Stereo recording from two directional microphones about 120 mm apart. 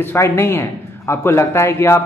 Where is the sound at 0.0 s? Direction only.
20° left (ahead or behind).